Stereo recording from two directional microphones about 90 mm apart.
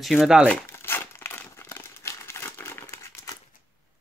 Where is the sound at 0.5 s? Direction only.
20° left (ahead or behind).